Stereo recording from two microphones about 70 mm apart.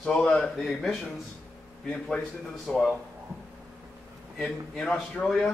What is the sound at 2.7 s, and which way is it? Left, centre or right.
Speech, centre.